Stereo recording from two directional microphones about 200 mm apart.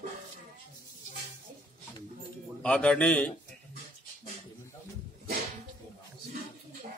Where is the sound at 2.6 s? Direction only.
5° left (ahead or behind).